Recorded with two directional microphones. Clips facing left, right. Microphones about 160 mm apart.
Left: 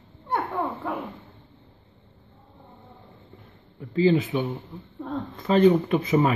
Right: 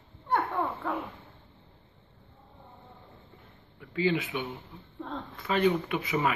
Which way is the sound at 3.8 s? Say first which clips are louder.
Left 8 dB; 35° left (ahead or behind).